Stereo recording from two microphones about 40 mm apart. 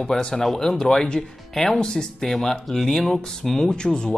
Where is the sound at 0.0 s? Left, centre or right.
Centre.